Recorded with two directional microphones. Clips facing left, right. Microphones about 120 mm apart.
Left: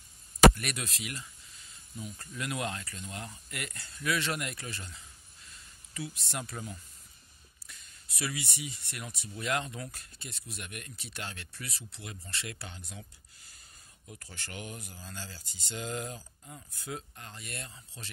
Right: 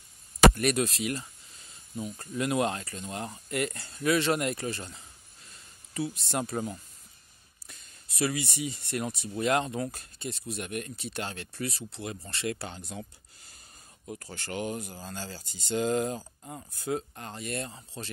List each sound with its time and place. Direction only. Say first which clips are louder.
0.6 s speech: right 11 dB; 35° right (ahead or behind)
8.2 s speech: right 8 dB; 35° right (ahead or behind)
14.0 s speech: right 8 dB; 40° right (ahead or behind)
15.0 s speech: right 6 dB; 45° right (ahead or behind)